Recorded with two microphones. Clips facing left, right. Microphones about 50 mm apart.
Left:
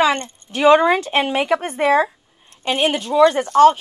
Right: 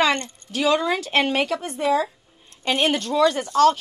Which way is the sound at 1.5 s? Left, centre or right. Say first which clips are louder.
Left 6 dB; left.